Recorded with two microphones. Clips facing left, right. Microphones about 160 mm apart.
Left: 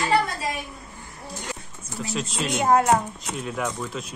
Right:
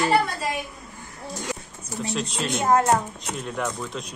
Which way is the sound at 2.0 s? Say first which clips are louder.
Right 1 dB; centre (ahead or behind).